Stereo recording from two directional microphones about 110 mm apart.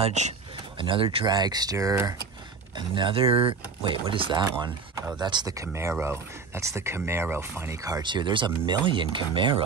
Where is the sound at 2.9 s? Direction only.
55° right (ahead or behind).